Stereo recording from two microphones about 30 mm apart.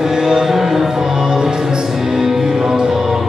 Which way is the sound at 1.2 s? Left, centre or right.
Right.